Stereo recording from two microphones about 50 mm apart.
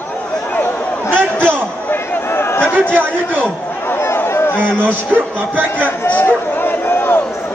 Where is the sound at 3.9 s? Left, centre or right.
Left.